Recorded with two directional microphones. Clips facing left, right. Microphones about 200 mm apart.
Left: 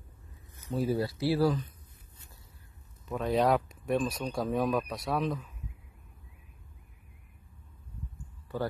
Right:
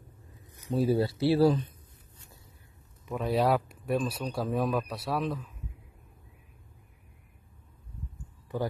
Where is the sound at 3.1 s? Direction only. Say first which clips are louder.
Even; 10° right (ahead or behind).